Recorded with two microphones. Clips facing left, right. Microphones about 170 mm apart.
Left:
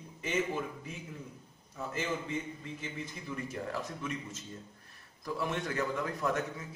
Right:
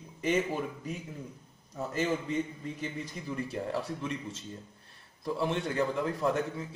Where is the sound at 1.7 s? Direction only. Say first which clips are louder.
Right 5 dB; 40° right (ahead or behind).